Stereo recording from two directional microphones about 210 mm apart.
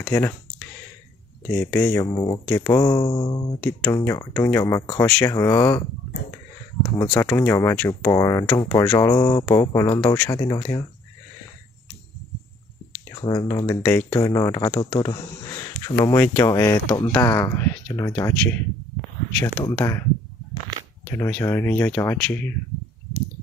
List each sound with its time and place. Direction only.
0.1 s speech: 10° left (ahead or behind)
1.5 s speech: 10° left (ahead or behind)
3.6 s speech: 10° left (ahead or behind)
7.2 s speech: 10° left (ahead or behind)
13.1 s speech: 20° left (ahead or behind)
21.2 s speech: 10° left (ahead or behind)